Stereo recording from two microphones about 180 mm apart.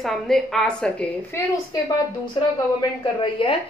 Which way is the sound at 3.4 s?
30° left (ahead or behind).